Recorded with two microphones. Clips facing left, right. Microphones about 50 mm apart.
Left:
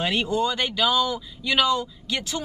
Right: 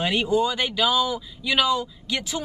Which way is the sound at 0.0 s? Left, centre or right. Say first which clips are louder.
Right 2 dB; centre.